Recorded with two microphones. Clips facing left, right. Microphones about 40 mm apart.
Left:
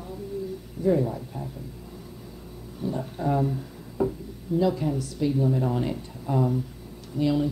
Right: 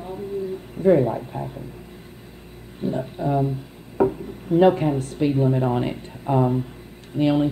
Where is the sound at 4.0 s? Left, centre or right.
Right.